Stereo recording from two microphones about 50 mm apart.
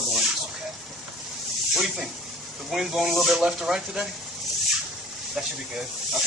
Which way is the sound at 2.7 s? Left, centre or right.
Centre.